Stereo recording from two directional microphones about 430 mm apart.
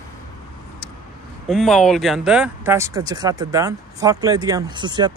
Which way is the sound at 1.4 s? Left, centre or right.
Centre.